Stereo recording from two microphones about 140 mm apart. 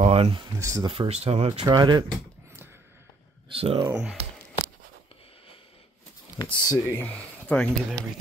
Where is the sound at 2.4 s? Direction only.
15° right (ahead or behind).